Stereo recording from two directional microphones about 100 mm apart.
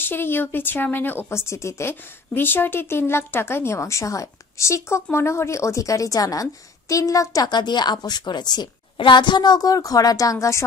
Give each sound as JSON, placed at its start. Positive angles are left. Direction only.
{"t": 0.0, "sound": "speech", "side_deg": 20}